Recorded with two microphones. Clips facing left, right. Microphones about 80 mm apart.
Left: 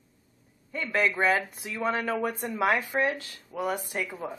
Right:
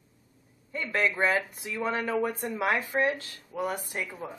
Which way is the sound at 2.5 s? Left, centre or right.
Centre.